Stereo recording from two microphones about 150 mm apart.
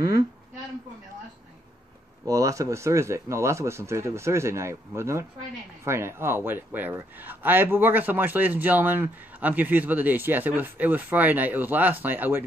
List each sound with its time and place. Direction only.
2.2 s a man's voice: 20° right (ahead or behind)